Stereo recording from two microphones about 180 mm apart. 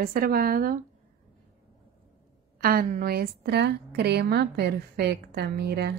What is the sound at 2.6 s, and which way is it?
A woman's voice, 55° right (ahead or behind).